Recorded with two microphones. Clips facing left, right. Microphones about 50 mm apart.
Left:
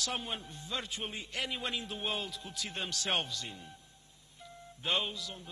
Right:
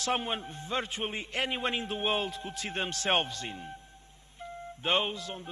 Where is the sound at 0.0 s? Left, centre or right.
Right.